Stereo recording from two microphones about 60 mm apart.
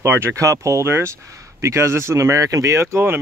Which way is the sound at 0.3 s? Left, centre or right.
Right.